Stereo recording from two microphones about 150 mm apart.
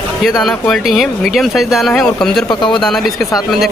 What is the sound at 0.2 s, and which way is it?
Speech, centre (ahead or behind).